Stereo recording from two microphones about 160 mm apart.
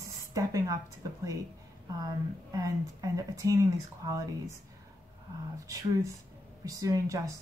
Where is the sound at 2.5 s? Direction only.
20° right (ahead or behind).